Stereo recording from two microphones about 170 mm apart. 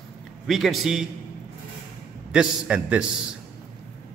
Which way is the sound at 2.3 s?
5° right (ahead or behind).